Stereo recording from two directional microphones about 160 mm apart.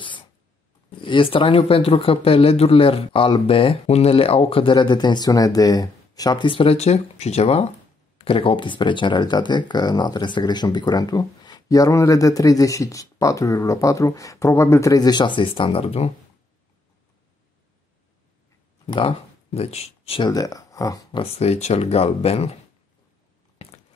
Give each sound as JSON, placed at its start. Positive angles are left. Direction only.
{"t": 0.0, "sound": "a sound", "side_deg": 30}
{"t": 1.0, "sound": "speech", "side_deg": 30}
{"t": 18.9, "sound": "speech", "side_deg": 35}